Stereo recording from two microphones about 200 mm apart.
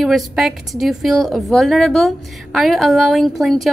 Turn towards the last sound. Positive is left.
turn(degrees=0)  # may be behind; listen again after turning